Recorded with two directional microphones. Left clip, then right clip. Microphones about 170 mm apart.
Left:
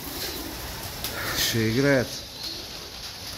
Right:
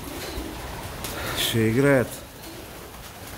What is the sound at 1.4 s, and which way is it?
Speech, 5° right (ahead or behind).